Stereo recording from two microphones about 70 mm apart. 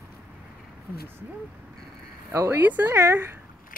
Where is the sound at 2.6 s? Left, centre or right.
Right.